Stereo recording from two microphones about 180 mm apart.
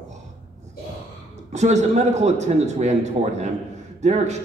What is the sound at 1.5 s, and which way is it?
A man's voice, 40° right (ahead or behind).